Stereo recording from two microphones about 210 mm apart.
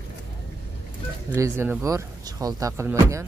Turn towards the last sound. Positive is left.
turn(degrees=-15)  # may be behind; listen again after turning